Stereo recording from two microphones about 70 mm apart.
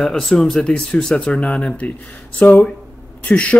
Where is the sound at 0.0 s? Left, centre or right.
Centre.